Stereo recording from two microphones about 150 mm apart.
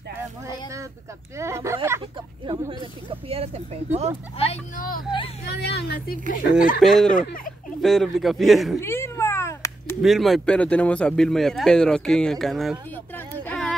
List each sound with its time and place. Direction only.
1.4 s a sound: 20° right (ahead or behind)
2.4 s speech: 35° right (ahead or behind)
4.7 s speech: 70° left (ahead or behind)
5.5 s speech: 90° left
6.3 s speech: 65° left (ahead or behind)
6.8 s speech: centre (ahead or behind)
8.8 s cat: 15° left (ahead or behind)
10.0 s speech: centre (ahead or behind)
12.9 s a sound: 10° left (ahead or behind)